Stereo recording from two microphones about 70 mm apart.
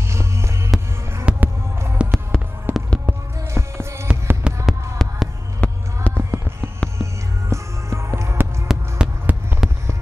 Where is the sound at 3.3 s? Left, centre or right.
Right.